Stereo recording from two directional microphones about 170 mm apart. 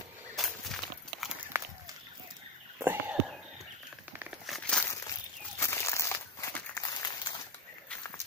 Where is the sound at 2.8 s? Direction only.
10° right (ahead or behind).